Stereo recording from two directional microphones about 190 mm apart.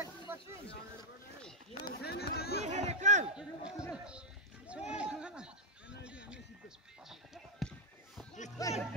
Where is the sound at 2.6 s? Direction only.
35° right (ahead or behind).